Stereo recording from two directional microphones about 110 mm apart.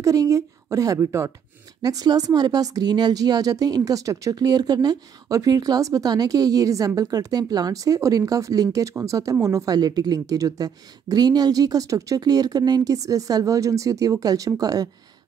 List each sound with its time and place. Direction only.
0.0 s a woman's voice: 30° right (ahead or behind)